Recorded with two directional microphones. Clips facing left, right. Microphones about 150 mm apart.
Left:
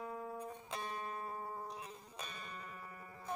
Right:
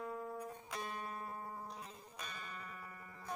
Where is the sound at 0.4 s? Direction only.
25° left (ahead or behind).